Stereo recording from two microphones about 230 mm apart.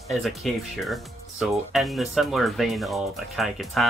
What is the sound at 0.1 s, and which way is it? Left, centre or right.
Speech, centre.